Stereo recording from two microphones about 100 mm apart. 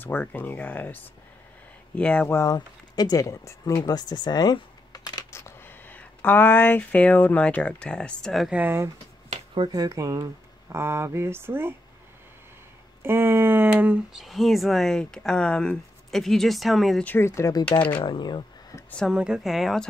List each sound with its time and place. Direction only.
0.0 s speech: 15° left (ahead or behind)
2.2 s speech: 35° left (ahead or behind)
5.3 s speech: 25° left (ahead or behind); by 8.5 s 5° left (ahead or behind)
8.5 s speech: 15° right (ahead or behind)
9.7 s speech: 35° right (ahead or behind)
13.0 s speech: 20° right (ahead or behind)
14.1 s speech: centre (ahead or behind)
17.0 s speech: 20° left (ahead or behind)
17.9 s speech: 55° left (ahead or behind)
19.0 s speech: 10° right (ahead or behind)